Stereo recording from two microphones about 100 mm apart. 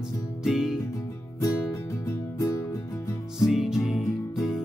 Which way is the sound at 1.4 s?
35° left (ahead or behind).